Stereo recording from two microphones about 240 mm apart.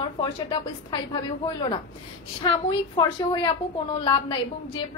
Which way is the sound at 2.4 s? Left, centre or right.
Centre.